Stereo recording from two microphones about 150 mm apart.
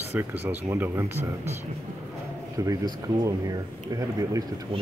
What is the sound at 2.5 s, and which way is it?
Speech, 20° right (ahead or behind).